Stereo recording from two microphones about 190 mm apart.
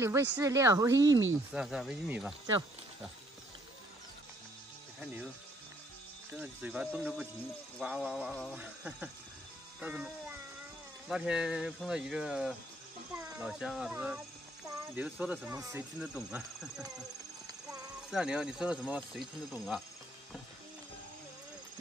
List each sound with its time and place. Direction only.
0.0 s speech: 15° right (ahead or behind)
1.5 s speech: 5° right (ahead or behind)
5.0 s speech: 5° right (ahead or behind)
6.3 s speech: 5° right (ahead or behind)
17.5 s clip-clop: 20° right (ahead or behind)
18.1 s speech: 5° right (ahead or behind)